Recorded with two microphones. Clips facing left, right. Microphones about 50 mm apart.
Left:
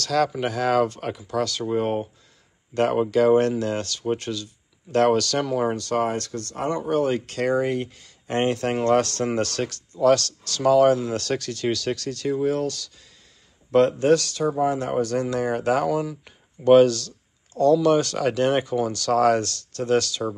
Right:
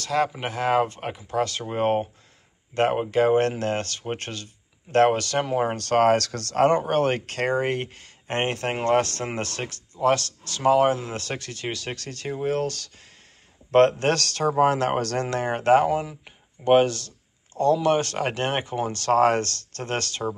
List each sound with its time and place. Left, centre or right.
0.0 s speech: right
2.7 s speech: right
5.8 s speech: right
6.8 s speech: right
12.4 s speech: right
14.6 s speech: right
14.9 s speech: right
15.4 s speech: right
15.8 s speech: right